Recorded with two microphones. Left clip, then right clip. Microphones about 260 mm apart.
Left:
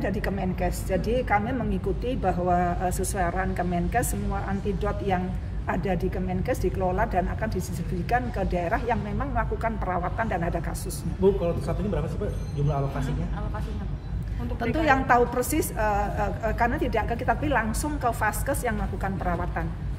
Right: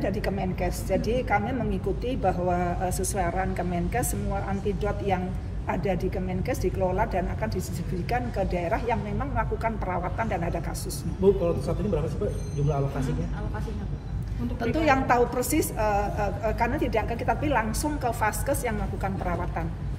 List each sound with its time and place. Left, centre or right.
0.0 s a woman's voice: centre
11.4 s speech: left
14.6 s a woman's voice: centre